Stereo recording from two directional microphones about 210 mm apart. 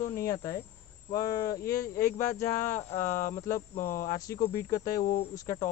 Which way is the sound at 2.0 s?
40° left (ahead or behind).